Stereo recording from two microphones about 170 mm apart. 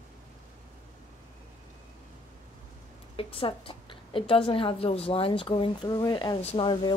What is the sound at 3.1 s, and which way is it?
A woman's voice, 30° left (ahead or behind).